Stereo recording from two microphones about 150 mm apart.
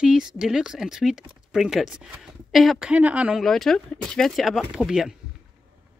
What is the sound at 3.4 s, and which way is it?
Speech, centre (ahead or behind).